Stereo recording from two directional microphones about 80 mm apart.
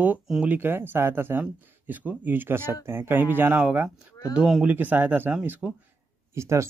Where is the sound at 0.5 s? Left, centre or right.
Right.